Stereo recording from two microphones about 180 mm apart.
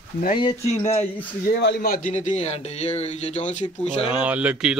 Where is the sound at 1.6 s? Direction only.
60° left (ahead or behind); by 4.1 s 40° left (ahead or behind).